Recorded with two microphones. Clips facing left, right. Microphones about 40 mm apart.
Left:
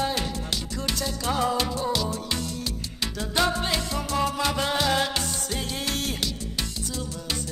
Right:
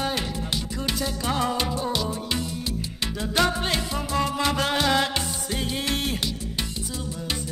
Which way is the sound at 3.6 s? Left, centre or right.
Centre.